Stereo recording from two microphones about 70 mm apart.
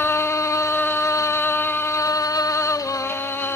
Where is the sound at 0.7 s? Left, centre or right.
Left.